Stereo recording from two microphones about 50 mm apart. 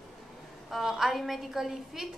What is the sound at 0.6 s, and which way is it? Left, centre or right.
A woman's voice, centre.